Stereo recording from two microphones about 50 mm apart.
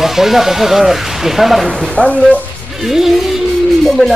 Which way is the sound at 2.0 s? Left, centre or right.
Centre.